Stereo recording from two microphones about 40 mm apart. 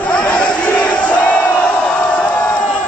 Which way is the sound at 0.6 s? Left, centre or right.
Left.